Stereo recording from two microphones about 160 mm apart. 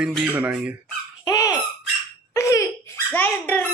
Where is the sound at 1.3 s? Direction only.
20° left (ahead or behind).